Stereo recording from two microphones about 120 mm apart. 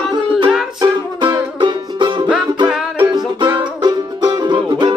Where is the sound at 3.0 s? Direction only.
35° right (ahead or behind).